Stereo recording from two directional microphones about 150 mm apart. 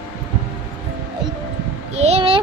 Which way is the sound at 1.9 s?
45° right (ahead or behind).